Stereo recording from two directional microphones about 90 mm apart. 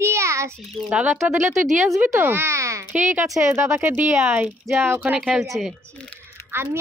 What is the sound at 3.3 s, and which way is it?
Speech, 35° right (ahead or behind).